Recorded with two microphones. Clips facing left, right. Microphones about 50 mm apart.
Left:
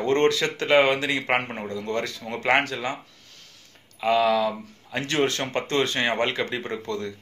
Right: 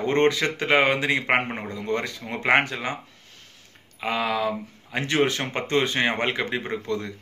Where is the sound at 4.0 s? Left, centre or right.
Centre.